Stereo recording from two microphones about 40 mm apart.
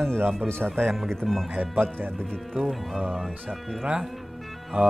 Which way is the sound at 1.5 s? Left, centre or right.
Right.